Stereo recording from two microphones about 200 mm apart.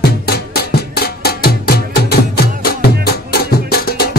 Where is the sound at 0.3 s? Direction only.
50° left (ahead or behind).